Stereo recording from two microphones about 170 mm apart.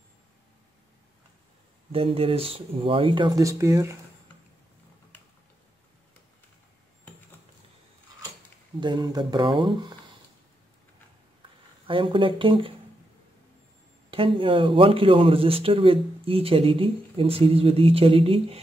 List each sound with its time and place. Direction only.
1.9 s a man's voice: 35° right (ahead or behind); by 3.9 s 15° right (ahead or behind)
8.7 s speech: 25° right (ahead or behind)
11.9 s a man's voice: 30° right (ahead or behind)
14.1 s a man's voice: 30° right (ahead or behind)